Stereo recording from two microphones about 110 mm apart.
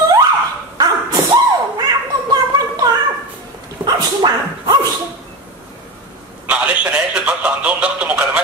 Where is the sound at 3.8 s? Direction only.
40° right (ahead or behind).